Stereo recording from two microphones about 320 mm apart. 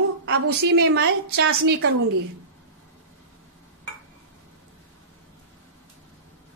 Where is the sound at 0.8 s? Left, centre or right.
Right.